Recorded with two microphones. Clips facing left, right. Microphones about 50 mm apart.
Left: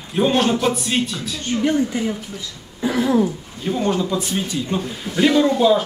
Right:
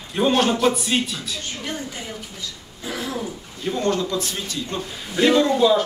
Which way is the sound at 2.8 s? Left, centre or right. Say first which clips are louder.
Left 10 dB; left.